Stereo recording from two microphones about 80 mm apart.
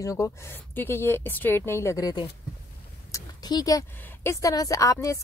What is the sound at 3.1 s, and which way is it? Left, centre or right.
Speech, left.